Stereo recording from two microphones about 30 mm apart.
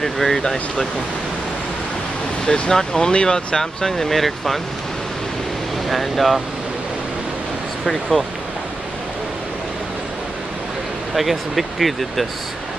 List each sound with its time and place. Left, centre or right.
0.0 s speech: centre
2.4 s speech: left; by 4.6 s centre
5.9 s speech: centre
7.8 s speech: centre
11.1 s speech: centre